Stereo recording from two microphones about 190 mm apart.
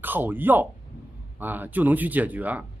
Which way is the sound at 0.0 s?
10° right (ahead or behind).